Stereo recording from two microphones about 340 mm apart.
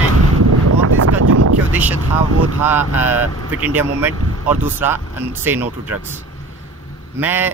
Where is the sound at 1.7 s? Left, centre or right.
Centre.